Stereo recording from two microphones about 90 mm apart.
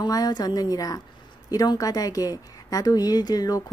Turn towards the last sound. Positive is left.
turn(degrees=45)  # may be behind; listen again after turning